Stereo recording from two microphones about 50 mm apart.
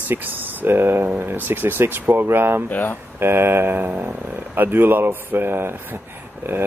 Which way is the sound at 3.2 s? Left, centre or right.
Right.